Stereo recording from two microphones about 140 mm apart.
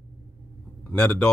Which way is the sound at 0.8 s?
10° left (ahead or behind).